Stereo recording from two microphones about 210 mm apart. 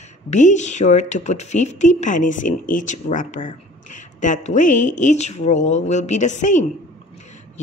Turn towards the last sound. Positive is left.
turn(degrees=35)  # may be behind; listen again after turning